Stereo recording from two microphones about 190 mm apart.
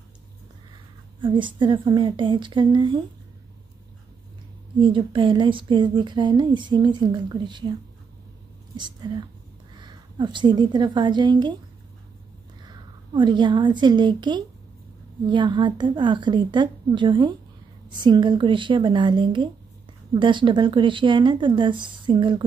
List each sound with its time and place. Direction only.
1.2 s speech: 25° right (ahead or behind)
4.7 s speech: 25° right (ahead or behind)
8.7 s a woman's voice: 25° right (ahead or behind)
12.6 s a woman's voice: 25° right (ahead or behind)